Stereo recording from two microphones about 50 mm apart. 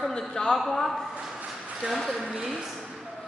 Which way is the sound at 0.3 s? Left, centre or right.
Centre.